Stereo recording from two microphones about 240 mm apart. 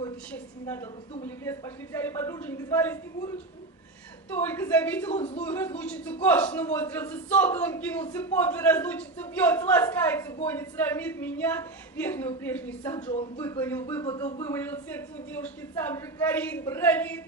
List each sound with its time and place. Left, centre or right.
0.3 s a man's voice: centre
5.1 s speech: left
5.4 s a man's voice: centre